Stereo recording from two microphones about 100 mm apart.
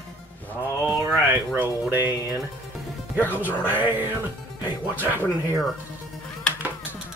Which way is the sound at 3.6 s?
20° right (ahead or behind).